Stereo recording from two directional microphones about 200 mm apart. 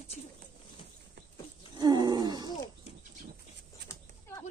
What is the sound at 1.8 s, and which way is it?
Wild animals, 20° right (ahead or behind).